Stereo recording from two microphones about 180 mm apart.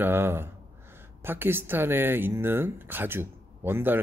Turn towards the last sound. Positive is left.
turn(degrees=-10)  # may be behind; listen again after turning